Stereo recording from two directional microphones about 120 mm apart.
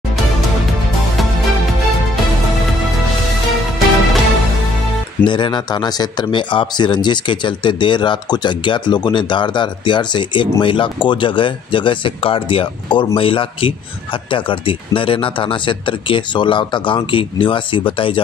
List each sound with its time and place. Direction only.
5.2 s speech: 40° left (ahead or behind)